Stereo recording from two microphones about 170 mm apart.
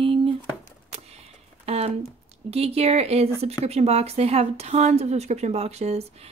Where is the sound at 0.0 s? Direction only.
30° right (ahead or behind).